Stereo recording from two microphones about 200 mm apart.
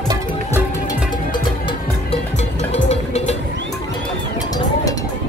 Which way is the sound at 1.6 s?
30° left (ahead or behind).